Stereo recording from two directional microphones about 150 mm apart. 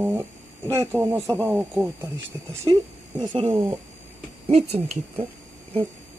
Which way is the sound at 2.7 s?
30° right (ahead or behind).